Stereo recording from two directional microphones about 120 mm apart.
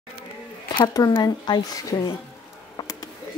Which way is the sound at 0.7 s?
35° left (ahead or behind).